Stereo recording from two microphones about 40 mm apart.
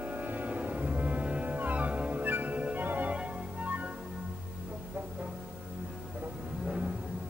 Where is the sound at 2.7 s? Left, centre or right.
Right.